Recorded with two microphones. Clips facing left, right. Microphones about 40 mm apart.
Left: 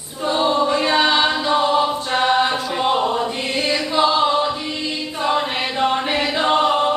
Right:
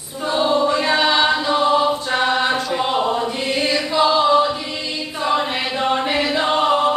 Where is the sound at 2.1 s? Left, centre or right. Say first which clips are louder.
Left 2 dB; centre.